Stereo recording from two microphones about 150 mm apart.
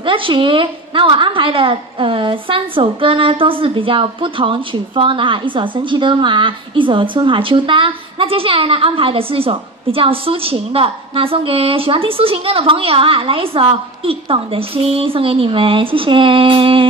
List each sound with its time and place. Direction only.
0.0 s a woman's voice: 35° right (ahead or behind)